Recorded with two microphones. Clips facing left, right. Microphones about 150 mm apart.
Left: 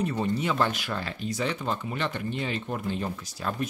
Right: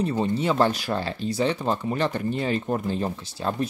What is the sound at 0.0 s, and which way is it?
Speech, 30° right (ahead or behind).